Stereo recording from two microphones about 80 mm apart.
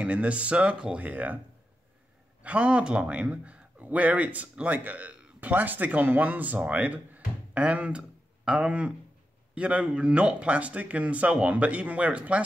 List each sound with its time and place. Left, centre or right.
0.0 s speech: centre
2.4 s a man's voice: centre